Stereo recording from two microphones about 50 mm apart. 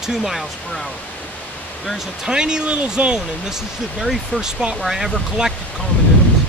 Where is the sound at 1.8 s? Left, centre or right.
Centre.